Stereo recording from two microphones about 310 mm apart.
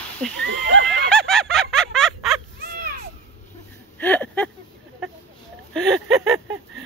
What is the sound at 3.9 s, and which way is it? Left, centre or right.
Speech, centre.